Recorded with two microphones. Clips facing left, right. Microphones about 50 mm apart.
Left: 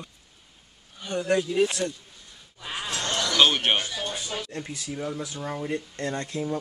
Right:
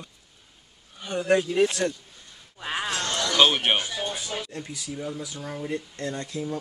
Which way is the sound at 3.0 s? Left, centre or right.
Centre.